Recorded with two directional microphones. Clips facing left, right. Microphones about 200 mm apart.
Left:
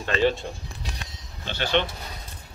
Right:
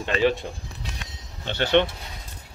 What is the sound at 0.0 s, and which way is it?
Speech, 15° right (ahead or behind).